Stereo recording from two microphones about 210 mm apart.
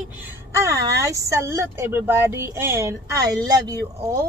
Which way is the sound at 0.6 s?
15° right (ahead or behind).